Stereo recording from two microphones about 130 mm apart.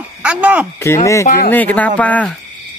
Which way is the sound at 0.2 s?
10° right (ahead or behind).